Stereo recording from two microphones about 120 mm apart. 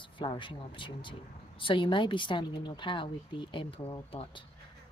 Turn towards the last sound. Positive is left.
turn(degrees=45)  # may be behind; listen again after turning